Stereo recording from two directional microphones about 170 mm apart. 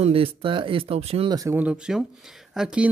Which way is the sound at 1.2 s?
20° right (ahead or behind).